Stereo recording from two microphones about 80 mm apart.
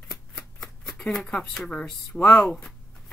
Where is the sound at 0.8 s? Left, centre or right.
Centre.